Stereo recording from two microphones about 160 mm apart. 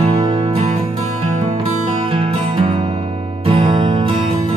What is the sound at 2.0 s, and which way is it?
Music, 35° right (ahead or behind).